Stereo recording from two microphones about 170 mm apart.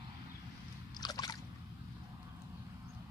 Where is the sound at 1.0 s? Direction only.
25° left (ahead or behind).